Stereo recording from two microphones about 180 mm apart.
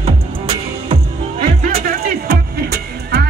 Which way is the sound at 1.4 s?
50° right (ahead or behind).